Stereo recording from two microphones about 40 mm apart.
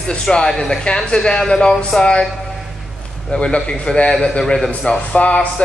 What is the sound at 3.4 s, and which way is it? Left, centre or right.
Speech, left.